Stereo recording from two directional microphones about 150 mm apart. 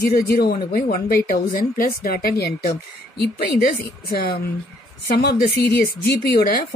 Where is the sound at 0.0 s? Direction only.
90° left.